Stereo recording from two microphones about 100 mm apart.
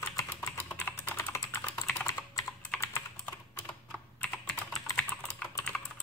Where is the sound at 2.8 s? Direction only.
25° left (ahead or behind).